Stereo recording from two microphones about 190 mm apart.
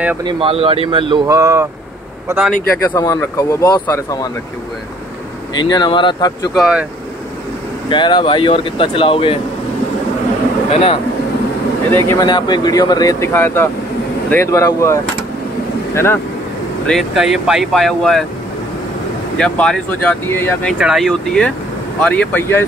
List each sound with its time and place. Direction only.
0.2 s a man's voice: 25° right (ahead or behind); by 2.5 s 10° right (ahead or behind)
2.7 s speech: 15° left (ahead or behind)
5.6 s speech: 25° left (ahead or behind)
6.5 s speech: 5° right (ahead or behind)
7.9 s speech: 25° left (ahead or behind)
10.7 s speech: 30° left (ahead or behind)
11.9 s speech: 15° left (ahead or behind)
12.3 s speech: 25° left (ahead or behind)
16.8 s speech: centre (ahead or behind)
19.3 s speech: 5° left (ahead or behind)
20.7 s speech: 5° right (ahead or behind)